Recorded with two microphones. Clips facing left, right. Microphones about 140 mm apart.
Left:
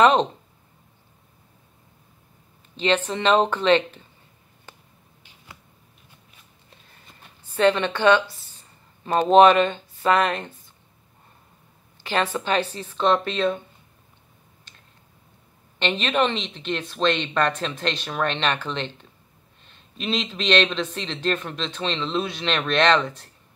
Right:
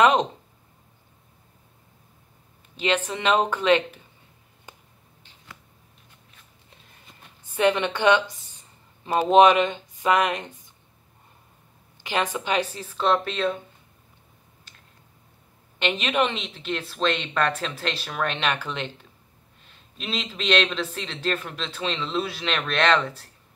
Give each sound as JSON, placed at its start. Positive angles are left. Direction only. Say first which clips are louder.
{"t": 2.7, "sound": "a woman's voice", "louder": "left 3 dB", "side_deg": -10}
{"t": 7.4, "sound": "a woman's voice", "louder": "left 2 dB", "side_deg": -15}
{"t": 12.0, "sound": "a man's voice", "louder": "left 2 dB", "side_deg": -15}
{"t": 15.8, "sound": "a woman's voice", "louder": "left 1 dB", "side_deg": -10}